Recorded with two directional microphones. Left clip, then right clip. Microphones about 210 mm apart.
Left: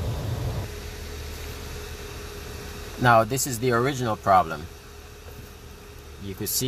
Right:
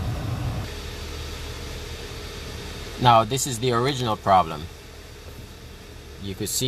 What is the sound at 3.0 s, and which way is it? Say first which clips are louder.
Speech: right 2 dB; 10° left (ahead or behind).